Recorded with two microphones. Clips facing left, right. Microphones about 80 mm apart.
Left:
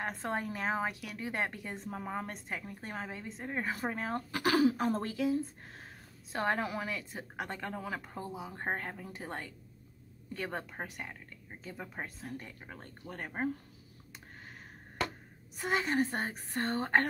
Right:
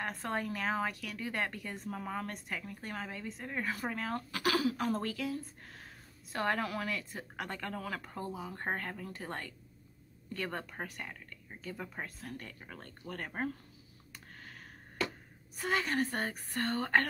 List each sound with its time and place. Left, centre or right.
0.0 s a woman's voice: centre
15.5 s speech: left